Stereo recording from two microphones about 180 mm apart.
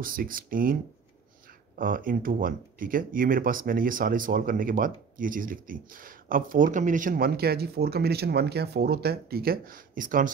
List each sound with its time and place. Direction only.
0.0 s speech: 50° right (ahead or behind)
1.8 s speech: 50° right (ahead or behind)